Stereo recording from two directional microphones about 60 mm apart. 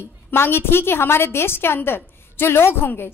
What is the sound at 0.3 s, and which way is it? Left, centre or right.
A woman's voice, left.